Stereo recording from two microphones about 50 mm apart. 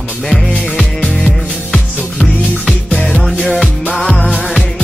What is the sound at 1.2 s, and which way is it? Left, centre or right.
Music, centre.